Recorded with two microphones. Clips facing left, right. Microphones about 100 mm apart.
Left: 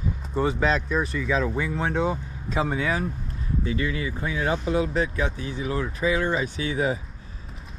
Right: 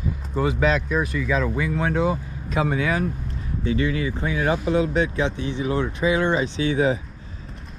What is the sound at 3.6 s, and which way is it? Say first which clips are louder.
Speech: right 6 dB; 30° right (ahead or behind).